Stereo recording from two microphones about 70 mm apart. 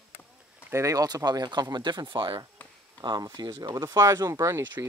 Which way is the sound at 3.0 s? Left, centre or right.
Right.